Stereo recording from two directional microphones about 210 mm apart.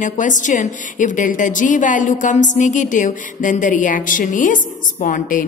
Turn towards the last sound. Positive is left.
turn(degrees=40)  # may be behind; listen again after turning